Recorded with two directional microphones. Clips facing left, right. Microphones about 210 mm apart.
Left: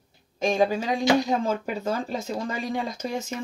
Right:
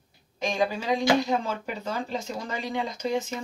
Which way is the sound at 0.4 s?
45° left (ahead or behind).